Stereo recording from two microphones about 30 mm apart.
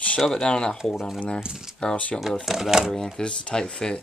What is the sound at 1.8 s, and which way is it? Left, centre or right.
Speech, left.